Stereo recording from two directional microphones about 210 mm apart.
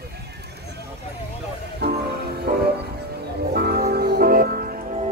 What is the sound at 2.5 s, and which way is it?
Music, 40° right (ahead or behind).